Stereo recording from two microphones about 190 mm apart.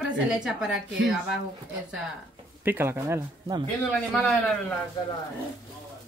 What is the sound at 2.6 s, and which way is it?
Speech, 10° right (ahead or behind).